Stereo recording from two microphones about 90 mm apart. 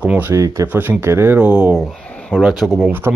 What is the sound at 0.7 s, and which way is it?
Speech, 20° right (ahead or behind).